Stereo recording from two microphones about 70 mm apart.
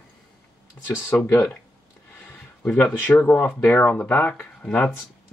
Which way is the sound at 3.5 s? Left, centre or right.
Left.